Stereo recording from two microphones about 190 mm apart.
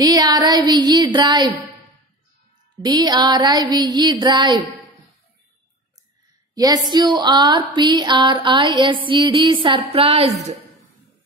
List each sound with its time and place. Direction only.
0.0 s a sound: 20° right (ahead or behind)
2.8 s music: 20° right (ahead or behind)
6.5 s music: 20° right (ahead or behind)